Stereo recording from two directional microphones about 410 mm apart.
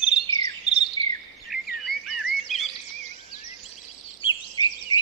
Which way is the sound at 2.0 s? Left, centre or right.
Centre.